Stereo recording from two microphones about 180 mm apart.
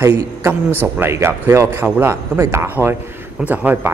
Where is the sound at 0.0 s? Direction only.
15° right (ahead or behind).